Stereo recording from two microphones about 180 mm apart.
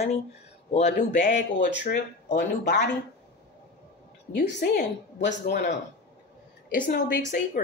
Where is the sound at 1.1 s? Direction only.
45° left (ahead or behind).